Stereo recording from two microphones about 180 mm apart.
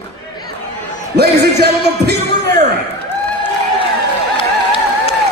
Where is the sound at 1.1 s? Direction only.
65° right (ahead or behind).